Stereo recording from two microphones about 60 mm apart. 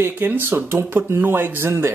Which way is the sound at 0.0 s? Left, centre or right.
Right.